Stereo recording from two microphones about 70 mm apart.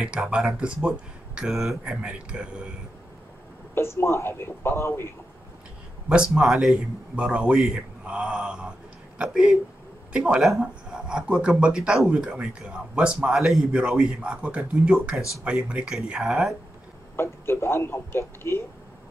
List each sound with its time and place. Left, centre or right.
0.0 s a man's voice: centre
1.5 s speech: centre
2.0 s a man's voice: centre
3.7 s speech: left
6.0 s a man's voice: centre
15.9 s speech: centre
17.2 s speech: left